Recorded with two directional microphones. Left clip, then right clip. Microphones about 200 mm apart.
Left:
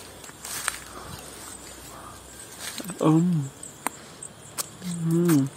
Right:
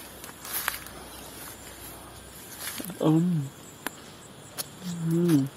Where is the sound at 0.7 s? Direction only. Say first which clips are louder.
Left 1 dB; centre (ahead or behind).